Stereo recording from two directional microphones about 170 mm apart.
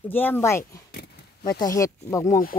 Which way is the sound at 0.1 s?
10° left (ahead or behind).